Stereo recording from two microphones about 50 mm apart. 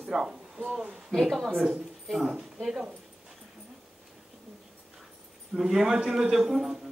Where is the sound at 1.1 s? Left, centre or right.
Centre.